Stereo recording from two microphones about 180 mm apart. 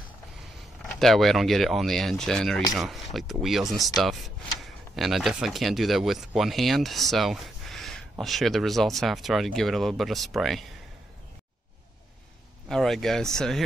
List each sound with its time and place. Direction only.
0.9 s speech: centre (ahead or behind)
12.6 s speech: centre (ahead or behind)